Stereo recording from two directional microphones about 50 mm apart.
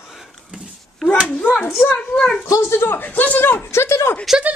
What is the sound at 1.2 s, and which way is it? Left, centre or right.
Speech, left.